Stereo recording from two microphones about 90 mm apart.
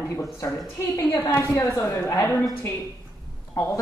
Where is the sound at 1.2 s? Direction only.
25° left (ahead or behind).